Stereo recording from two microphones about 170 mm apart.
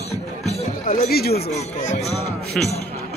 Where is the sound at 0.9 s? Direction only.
65° left (ahead or behind).